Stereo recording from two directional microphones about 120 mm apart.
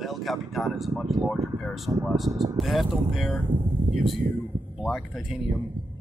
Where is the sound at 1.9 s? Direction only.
15° right (ahead or behind).